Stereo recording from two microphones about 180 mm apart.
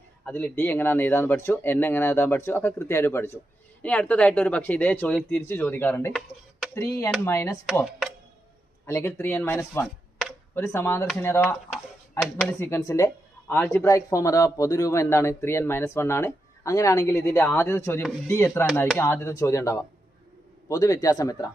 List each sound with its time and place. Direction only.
0.2 s speech: 10° left (ahead or behind)
8.8 s a man's voice: 15° left (ahead or behind)